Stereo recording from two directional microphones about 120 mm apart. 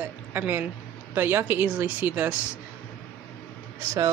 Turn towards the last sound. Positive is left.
turn(degrees=-25)  # may be behind; listen again after turning